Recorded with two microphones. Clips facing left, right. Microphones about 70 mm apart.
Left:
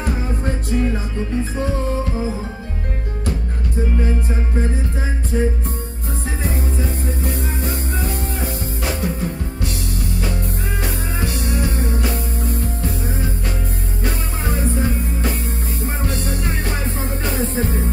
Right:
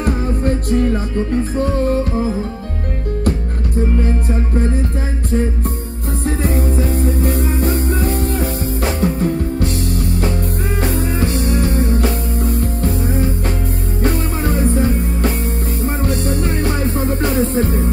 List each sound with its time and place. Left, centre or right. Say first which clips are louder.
0.0 s music: right 5 dB; right
6.4 s music: right 5 dB; right
10.8 s music: right 8 dB; right
17.4 s music: right 5 dB; right